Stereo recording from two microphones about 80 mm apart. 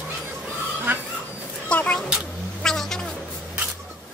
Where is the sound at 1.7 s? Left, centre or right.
Centre.